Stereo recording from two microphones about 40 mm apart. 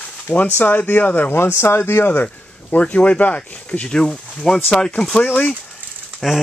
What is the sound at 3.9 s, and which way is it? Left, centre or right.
Speech, centre.